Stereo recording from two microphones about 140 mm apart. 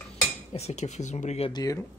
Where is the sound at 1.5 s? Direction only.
25° left (ahead or behind).